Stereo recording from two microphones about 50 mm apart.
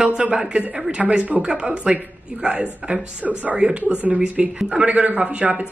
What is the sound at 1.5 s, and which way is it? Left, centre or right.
A woman's voice, centre.